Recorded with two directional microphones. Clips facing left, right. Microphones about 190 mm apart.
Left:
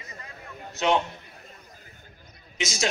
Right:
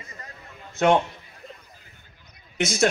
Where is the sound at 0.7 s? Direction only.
50° right (ahead or behind).